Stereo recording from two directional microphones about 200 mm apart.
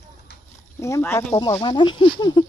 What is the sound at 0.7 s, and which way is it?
Speech, 15° left (ahead or behind).